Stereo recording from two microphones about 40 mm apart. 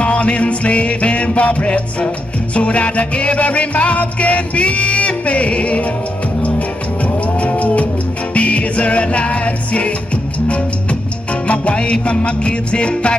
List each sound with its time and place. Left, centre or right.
0.0 s music: left
7.3 s cattle: left
8.4 s music: left
11.4 s music: left